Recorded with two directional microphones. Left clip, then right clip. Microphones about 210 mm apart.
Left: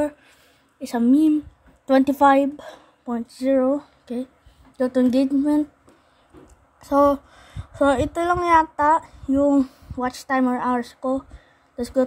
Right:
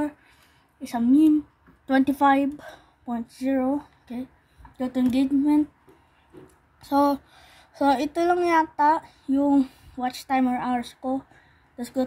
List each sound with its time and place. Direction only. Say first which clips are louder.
0.7 s speech: left 2 dB; 20° left (ahead or behind)
6.9 s a woman's voice: left 4 dB; 10° left (ahead or behind)